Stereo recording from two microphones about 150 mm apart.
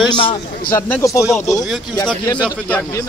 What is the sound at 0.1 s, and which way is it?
Speech, 35° left (ahead or behind).